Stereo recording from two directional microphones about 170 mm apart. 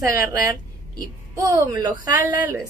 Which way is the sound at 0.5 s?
20° right (ahead or behind).